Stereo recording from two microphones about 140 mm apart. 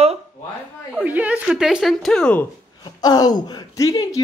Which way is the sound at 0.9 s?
10° right (ahead or behind).